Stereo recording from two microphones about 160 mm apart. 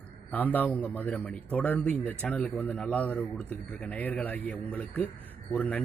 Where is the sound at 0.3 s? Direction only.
10° left (ahead or behind).